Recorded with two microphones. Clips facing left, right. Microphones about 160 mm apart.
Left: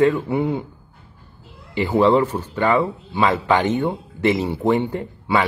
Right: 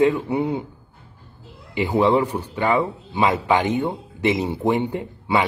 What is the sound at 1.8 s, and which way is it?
Speech, 15° right (ahead or behind).